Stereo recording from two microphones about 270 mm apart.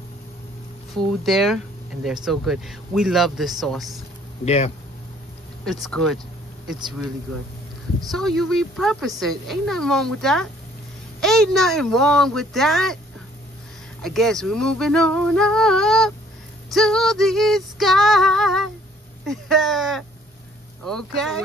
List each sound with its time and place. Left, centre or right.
0.9 s speech: centre
4.5 s speech: left
5.7 s speech: centre
8.1 s speech: centre
14.0 s speech: centre